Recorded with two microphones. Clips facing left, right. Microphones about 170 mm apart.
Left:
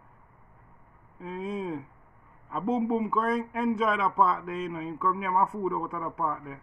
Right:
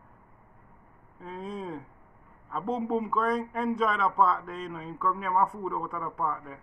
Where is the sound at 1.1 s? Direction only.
Centre (ahead or behind).